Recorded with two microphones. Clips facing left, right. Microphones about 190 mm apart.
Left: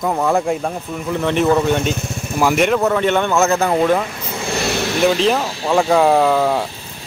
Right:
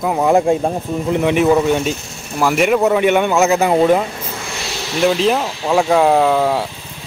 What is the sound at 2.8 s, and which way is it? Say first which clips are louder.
Speech: right 3 dB; 15° right (ahead or behind).